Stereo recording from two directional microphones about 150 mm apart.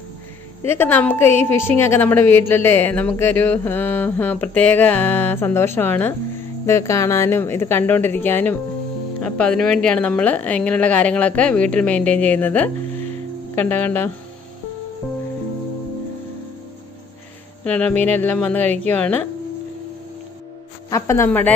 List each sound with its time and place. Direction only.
0.7 s a woman's voice: 15° left (ahead or behind)
17.6 s a woman's voice: 10° left (ahead or behind)
20.9 s a woman's voice: 20° left (ahead or behind)